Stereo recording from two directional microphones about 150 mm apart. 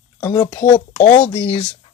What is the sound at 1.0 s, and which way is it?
Speech, 50° left (ahead or behind).